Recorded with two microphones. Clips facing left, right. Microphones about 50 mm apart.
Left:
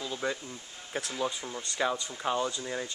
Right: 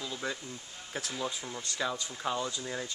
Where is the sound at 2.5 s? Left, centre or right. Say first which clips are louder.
Left 2 dB; centre.